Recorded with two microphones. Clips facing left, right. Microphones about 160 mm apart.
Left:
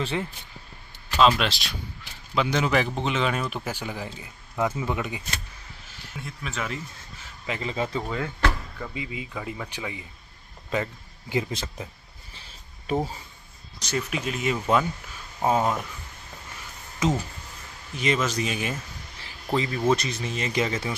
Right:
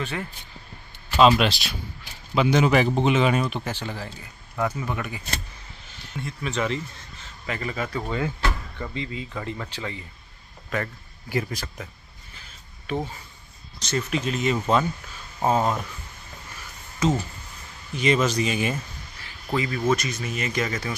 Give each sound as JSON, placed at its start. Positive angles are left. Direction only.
{"t": 0.0, "sound": "speech", "side_deg": 25}
{"t": 1.2, "sound": "speech", "side_deg": -5}
{"t": 6.1, "sound": "speech", "side_deg": 0}
{"t": 7.4, "sound": "speech", "side_deg": 20}
{"t": 8.0, "sound": "speech", "side_deg": 0}
{"t": 12.8, "sound": "speech", "side_deg": 35}
{"t": 13.7, "sound": "speech", "side_deg": 10}
{"t": 17.0, "sound": "speech", "side_deg": 20}
{"t": 17.9, "sound": "speech", "side_deg": 0}
{"t": 19.5, "sound": "speech", "side_deg": 30}